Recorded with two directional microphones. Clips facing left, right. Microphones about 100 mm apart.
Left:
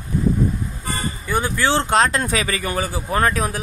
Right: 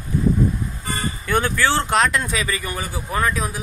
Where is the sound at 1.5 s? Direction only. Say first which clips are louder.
Left 1 dB; 20° left (ahead or behind).